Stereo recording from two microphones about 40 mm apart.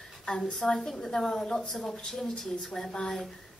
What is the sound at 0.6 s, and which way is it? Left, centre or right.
A woman's voice, centre.